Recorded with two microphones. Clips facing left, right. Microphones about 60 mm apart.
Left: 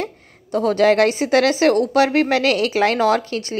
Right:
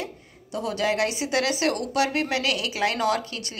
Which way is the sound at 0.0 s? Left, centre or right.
Left.